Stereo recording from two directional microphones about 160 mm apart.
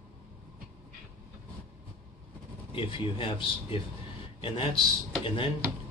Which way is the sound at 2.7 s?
35° left (ahead or behind).